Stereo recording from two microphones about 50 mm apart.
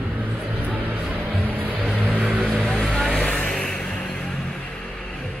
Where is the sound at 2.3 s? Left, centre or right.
Centre.